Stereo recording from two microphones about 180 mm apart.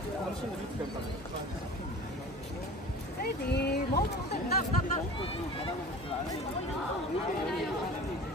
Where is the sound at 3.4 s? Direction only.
65° left (ahead or behind).